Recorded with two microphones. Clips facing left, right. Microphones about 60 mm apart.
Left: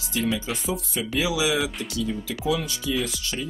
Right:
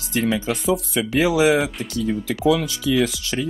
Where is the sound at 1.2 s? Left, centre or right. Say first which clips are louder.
Right 7 dB; right.